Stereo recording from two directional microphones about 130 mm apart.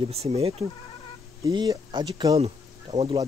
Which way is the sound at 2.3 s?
50° right (ahead or behind).